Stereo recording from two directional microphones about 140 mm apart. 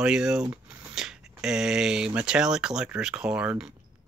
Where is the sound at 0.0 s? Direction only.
5° right (ahead or behind).